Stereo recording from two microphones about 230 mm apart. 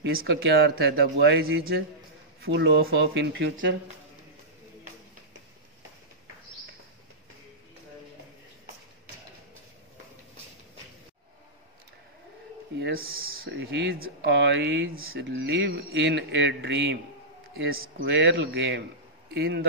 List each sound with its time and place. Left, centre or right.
0.0 s speech: right
12.7 s a sound: right
13.4 s speech: right